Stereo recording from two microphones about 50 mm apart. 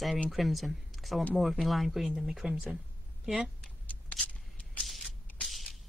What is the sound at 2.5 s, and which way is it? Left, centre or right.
Speech, centre.